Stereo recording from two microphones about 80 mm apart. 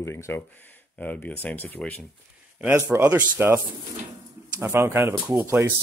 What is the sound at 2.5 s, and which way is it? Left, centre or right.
Speech, centre.